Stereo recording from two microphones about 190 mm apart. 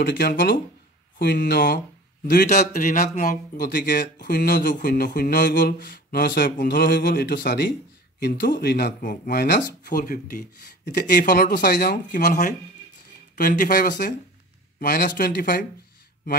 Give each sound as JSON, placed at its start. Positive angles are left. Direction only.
{"t": 0.0, "sound": "a man's voice", "side_deg": 60}